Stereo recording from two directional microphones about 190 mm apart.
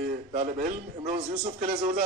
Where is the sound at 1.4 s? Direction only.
35° right (ahead or behind).